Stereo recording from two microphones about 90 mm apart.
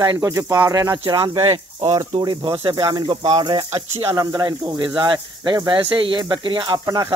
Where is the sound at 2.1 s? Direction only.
60° right (ahead or behind).